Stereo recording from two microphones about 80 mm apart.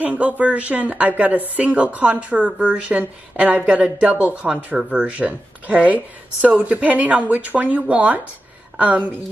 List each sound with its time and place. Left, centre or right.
0.0 s a woman's voice: centre